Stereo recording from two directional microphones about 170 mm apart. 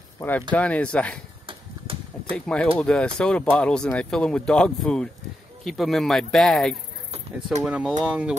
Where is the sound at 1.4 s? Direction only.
30° right (ahead or behind).